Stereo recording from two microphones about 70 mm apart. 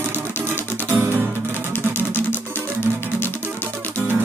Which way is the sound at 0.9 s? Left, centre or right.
Right.